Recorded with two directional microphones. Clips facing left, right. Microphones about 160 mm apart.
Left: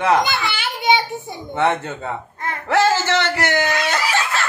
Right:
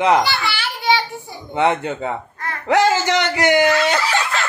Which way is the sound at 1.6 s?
15° right (ahead or behind).